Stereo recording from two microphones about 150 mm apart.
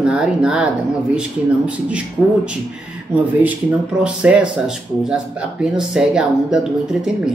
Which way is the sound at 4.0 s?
5° right (ahead or behind).